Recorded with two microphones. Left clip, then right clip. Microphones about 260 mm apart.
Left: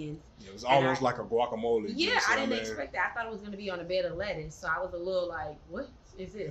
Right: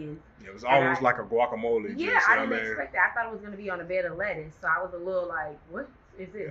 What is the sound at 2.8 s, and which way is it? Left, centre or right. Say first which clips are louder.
A woman's voice: right 6 dB; left.